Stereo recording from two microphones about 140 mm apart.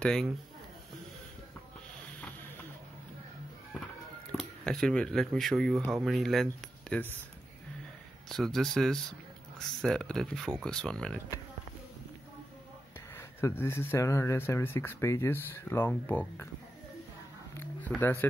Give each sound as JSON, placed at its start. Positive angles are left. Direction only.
{"t": 0.0, "sound": "speech", "side_deg": 5}
{"t": 4.3, "sound": "speech", "side_deg": 5}
{"t": 8.3, "sound": "speech", "side_deg": 0}
{"t": 13.1, "sound": "speech", "side_deg": 15}
{"t": 17.6, "sound": "a sound", "side_deg": 15}